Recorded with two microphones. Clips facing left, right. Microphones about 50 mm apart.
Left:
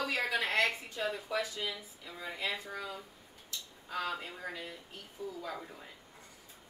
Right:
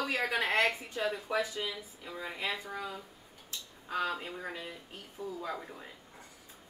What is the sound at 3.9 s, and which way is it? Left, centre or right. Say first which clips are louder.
A woman's voice: right 3 dB; right.